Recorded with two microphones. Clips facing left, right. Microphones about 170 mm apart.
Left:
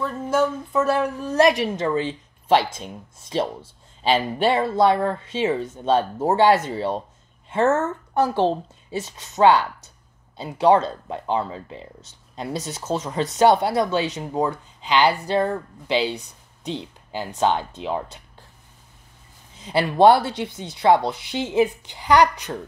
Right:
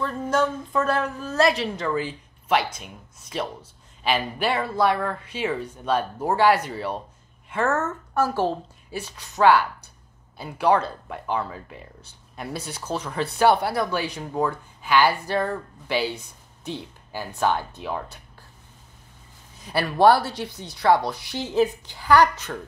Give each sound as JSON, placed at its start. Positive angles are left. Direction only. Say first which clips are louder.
{"t": 0.0, "sound": "a woman's voice", "louder": "left 2 dB", "side_deg": 5}
{"t": 19.6, "sound": "speech", "louder": "left 3 dB", "side_deg": 20}